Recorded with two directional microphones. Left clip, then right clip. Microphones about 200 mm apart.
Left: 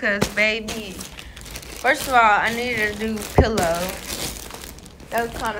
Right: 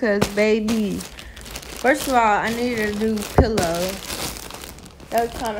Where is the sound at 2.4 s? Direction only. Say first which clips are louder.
Left 1 dB; 25° right (ahead or behind).